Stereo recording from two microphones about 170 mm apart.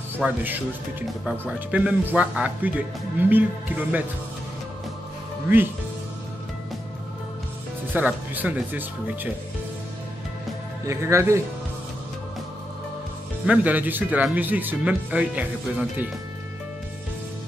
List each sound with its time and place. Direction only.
0.2 s speech: 10° right (ahead or behind)
7.9 s speech: 10° right (ahead or behind)
10.9 s speech: 15° right (ahead or behind)
13.5 s speech: 10° right (ahead or behind)